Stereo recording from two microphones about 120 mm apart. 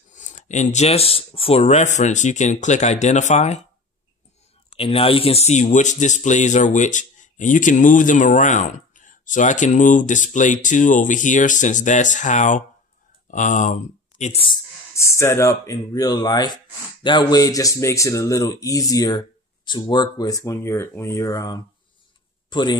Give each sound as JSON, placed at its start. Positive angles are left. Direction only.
{"t": 0.1, "sound": "speech", "side_deg": 90}
{"t": 4.7, "sound": "speech", "side_deg": 50}
{"t": 15.0, "sound": "a man's voice", "side_deg": 25}